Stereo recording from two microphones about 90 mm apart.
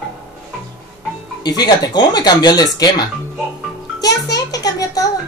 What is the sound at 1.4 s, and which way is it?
Speech, 50° left (ahead or behind).